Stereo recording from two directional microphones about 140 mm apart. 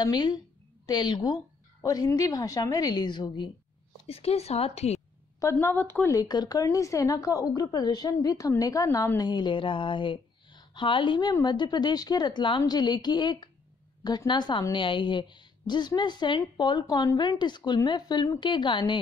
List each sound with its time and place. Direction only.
0.0 s a woman's voice: 30° left (ahead or behind)
4.1 s a woman's voice: 45° left (ahead or behind)
5.4 s a woman's voice: 20° left (ahead or behind)
9.3 s a woman's voice: 35° left (ahead or behind)